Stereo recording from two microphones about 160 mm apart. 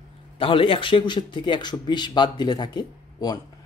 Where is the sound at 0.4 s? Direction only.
35° left (ahead or behind).